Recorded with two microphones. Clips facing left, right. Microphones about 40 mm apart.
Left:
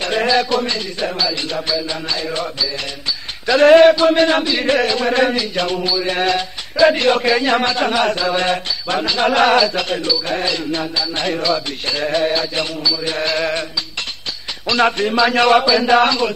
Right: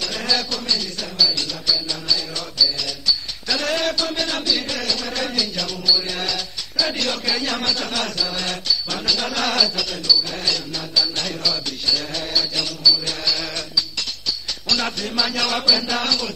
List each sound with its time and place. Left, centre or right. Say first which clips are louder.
0.0 s speech: left 8 dB; left
14.7 s speech: left 9 dB; left